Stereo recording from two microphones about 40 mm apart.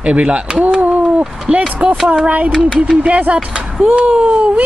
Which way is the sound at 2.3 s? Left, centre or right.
Right.